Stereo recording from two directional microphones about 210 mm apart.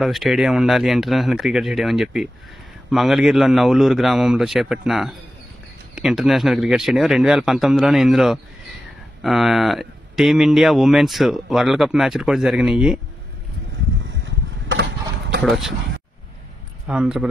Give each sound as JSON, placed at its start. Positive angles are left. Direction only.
{"t": 0.0, "sound": "speech", "side_deg": 0}
{"t": 14.2, "sound": "a sound", "side_deg": -60}
{"t": 15.4, "sound": "speech", "side_deg": 0}
{"t": 16.8, "sound": "speech", "side_deg": -5}